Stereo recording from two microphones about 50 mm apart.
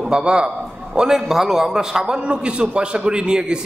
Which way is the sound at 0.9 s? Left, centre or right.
Centre.